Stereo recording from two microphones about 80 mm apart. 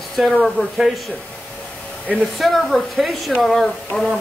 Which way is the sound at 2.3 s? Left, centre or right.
Centre.